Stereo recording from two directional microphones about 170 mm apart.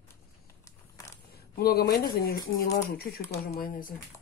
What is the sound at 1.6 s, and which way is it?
Speech, 65° left (ahead or behind).